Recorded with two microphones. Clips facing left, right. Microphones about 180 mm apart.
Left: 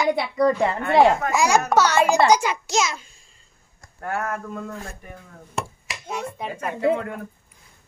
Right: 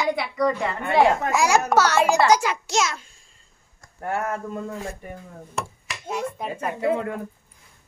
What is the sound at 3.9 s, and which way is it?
Speech, 25° right (ahead or behind).